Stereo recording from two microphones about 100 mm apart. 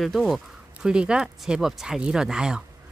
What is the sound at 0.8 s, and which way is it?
Speech, 10° right (ahead or behind).